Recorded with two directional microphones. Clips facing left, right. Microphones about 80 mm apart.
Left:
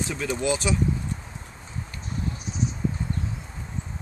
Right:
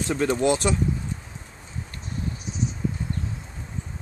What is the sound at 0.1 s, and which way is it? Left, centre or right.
Speech, right.